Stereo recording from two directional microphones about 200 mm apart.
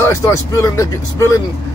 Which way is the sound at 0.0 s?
15° left (ahead or behind).